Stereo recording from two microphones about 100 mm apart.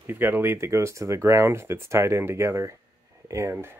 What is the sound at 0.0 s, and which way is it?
Speech, 20° right (ahead or behind).